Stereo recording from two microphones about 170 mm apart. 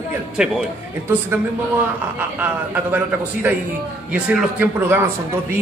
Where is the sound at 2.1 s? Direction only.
10° right (ahead or behind).